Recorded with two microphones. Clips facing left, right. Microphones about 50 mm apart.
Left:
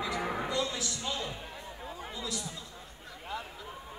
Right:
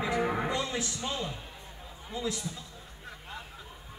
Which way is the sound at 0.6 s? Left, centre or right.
Right.